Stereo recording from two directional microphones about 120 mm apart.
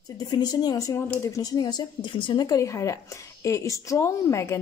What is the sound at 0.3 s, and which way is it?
A woman's voice, 35° left (ahead or behind).